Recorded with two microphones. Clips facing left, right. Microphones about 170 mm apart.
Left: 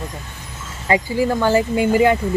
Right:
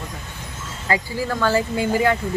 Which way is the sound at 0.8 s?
20° left (ahead or behind).